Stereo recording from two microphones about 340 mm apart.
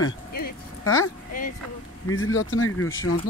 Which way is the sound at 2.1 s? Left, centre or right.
Left.